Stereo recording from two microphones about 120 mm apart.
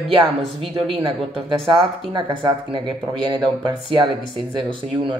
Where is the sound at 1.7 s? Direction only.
40° right (ahead or behind).